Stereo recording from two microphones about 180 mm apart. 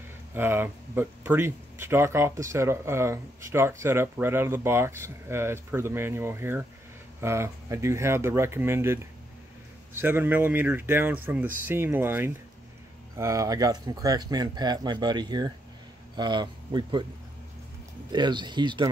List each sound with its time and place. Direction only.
0.3 s speech: 10° right (ahead or behind)
18.1 s speech: 25° right (ahead or behind)